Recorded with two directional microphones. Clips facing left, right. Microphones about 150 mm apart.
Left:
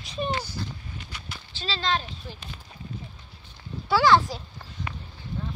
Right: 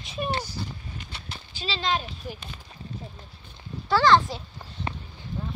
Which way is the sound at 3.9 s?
5° left (ahead or behind).